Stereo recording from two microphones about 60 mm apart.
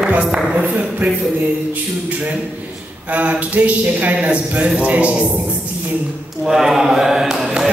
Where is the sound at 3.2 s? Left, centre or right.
Right.